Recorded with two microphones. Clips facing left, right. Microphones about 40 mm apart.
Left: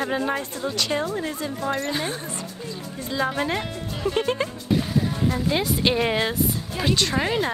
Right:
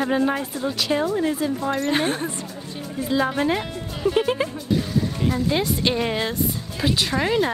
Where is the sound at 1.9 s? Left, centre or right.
Right.